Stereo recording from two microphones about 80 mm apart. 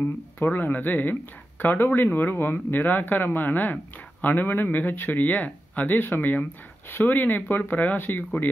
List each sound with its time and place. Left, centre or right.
0.4 s speech: left